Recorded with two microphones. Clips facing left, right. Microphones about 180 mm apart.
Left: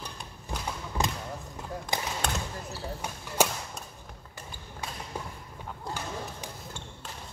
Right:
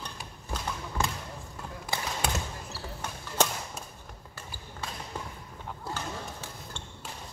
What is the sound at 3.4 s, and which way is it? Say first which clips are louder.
Chop: left 2 dB; 10° left (ahead or behind).